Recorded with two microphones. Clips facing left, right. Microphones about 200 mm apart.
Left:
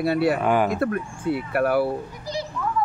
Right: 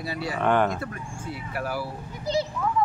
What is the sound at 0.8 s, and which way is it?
Speech, 60° left (ahead or behind).